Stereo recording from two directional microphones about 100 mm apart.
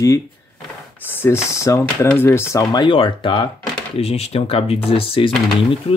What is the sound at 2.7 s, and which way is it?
Speech, 50° left (ahead or behind).